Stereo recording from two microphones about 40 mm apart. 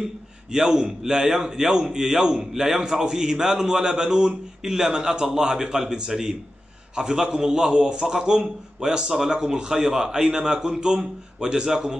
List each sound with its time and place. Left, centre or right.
0.5 s a man's voice: centre